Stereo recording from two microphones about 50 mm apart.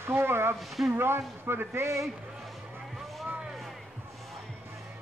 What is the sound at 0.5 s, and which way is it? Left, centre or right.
Speech, centre.